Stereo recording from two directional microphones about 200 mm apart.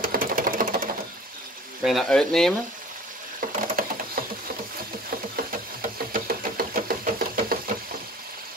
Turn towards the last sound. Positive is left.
turn(degrees=-45)  # may be behind; listen again after turning